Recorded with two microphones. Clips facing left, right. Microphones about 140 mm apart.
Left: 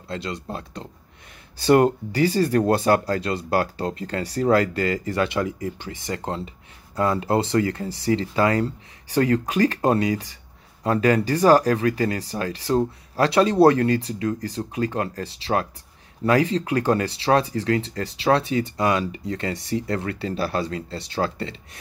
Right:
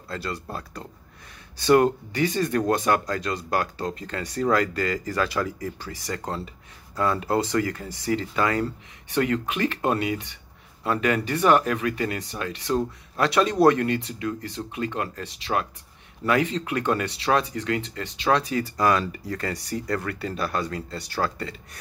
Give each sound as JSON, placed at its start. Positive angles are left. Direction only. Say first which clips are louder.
{"t": 0.1, "sound": "speech", "louder": "left 2 dB", "side_deg": 25}